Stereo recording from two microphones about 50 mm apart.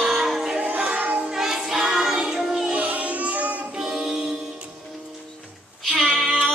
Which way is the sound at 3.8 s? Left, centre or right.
Centre.